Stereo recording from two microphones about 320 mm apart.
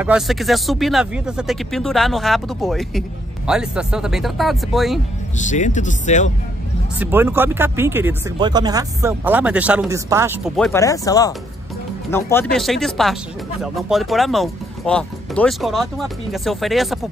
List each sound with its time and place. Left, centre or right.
0.0 s speech: centre
5.4 s speech: left
7.0 s speech: centre